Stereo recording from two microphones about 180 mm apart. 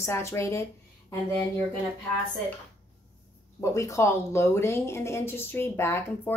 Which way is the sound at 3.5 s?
15° left (ahead or behind).